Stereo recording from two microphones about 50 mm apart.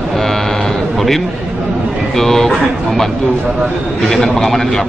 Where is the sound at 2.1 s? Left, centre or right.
Centre.